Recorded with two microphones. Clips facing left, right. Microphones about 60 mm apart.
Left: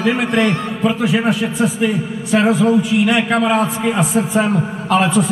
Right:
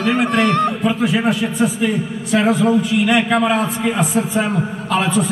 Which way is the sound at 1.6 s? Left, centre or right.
Left.